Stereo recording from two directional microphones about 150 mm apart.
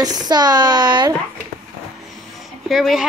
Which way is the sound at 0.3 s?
30° right (ahead or behind).